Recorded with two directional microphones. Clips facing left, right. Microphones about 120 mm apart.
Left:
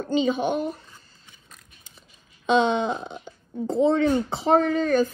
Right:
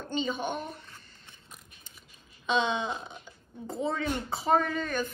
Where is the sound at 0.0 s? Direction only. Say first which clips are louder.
Left 9 dB; 45° left (ahead or behind).